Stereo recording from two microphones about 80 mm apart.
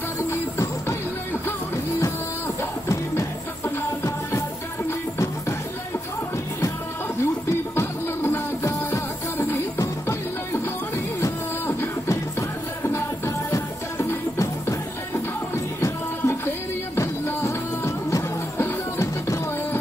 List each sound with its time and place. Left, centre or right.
0.3 s music: left
2.0 s music: left
7.4 s music: left